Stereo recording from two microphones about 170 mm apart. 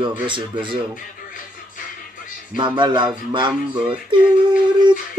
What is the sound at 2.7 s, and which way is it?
Speech, 25° right (ahead or behind).